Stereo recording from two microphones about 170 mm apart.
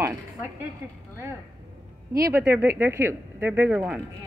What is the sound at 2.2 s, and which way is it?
A woman's voice, 15° right (ahead or behind).